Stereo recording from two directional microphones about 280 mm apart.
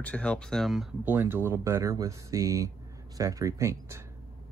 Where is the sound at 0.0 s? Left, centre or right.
Centre.